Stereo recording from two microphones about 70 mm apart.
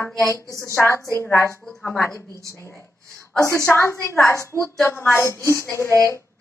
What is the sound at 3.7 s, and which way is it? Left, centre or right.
A woman's voice, left.